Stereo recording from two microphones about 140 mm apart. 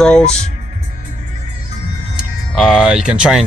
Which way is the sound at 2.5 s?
Centre (ahead or behind).